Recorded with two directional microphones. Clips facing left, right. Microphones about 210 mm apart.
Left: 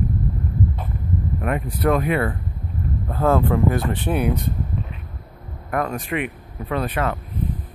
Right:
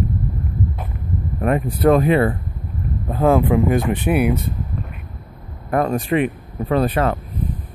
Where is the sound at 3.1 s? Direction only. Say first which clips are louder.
Right 4 dB; 15° right (ahead or behind).